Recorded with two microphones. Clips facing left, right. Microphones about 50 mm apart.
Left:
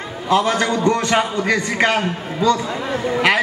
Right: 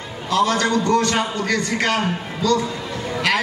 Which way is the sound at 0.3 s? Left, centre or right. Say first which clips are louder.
Left 1 dB; left.